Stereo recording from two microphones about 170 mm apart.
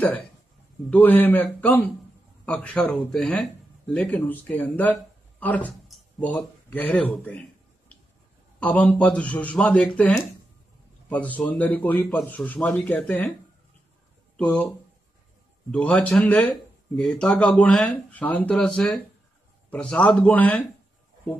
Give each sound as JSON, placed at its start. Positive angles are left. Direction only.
{"t": 0.8, "sound": "speech", "side_deg": 10}
{"t": 8.5, "sound": "speech", "side_deg": 10}
{"t": 14.3, "sound": "speech", "side_deg": 5}
{"t": 15.7, "sound": "speech", "side_deg": 5}